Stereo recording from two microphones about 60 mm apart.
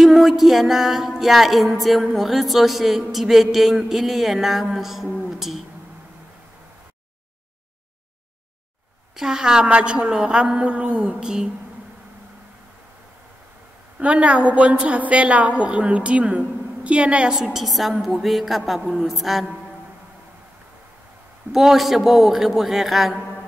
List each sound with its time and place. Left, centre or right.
0.0 s music: centre
9.1 s a woman's voice: centre
13.9 s a woman's voice: centre
17.4 s music: centre
21.5 s music: centre